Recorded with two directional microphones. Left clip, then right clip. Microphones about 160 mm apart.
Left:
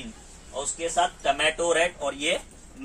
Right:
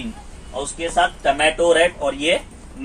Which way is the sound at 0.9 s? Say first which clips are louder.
Right 7 dB; 10° left (ahead or behind).